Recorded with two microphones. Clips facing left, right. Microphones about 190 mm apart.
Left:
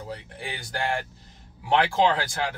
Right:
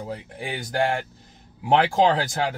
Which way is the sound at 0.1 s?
50° right (ahead or behind).